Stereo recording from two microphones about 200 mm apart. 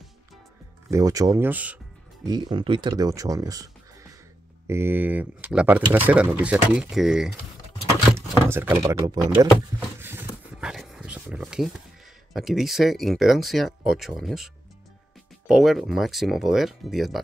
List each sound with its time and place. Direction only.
0.8 s speech: 15° right (ahead or behind)
2.2 s speech: 20° right (ahead or behind); by 7.3 s centre (ahead or behind)
8.5 s speech: 10° right (ahead or behind)
9.8 s a sound: 10° right (ahead or behind)
12.4 s speech: centre (ahead or behind)